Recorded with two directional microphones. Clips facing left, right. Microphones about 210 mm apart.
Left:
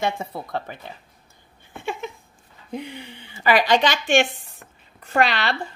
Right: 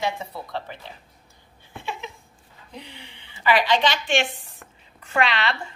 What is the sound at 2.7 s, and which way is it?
A woman's voice, 50° left (ahead or behind).